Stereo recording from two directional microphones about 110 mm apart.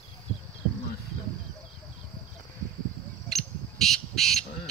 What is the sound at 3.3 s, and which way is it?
Crow, centre (ahead or behind).